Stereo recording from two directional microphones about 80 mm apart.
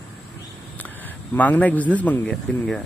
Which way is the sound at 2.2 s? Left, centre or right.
Centre.